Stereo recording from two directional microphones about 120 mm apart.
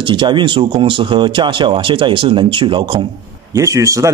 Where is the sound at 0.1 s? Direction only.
40° right (ahead or behind).